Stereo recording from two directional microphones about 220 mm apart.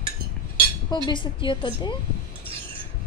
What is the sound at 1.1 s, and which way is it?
Cutlery, 20° left (ahead or behind).